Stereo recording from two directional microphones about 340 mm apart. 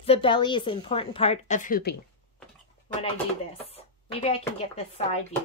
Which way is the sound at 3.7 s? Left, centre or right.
Centre.